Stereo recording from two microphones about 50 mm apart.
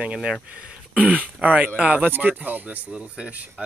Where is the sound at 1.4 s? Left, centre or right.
Right.